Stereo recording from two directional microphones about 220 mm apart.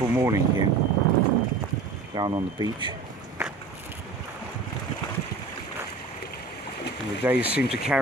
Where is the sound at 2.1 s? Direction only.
20° right (ahead or behind).